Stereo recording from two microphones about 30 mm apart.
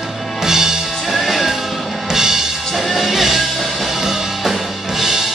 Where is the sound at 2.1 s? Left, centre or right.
Centre.